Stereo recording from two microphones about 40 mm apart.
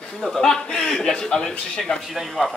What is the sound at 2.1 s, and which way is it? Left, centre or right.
Speech, centre.